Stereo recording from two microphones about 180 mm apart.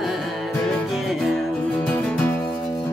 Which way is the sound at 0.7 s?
Centre (ahead or behind).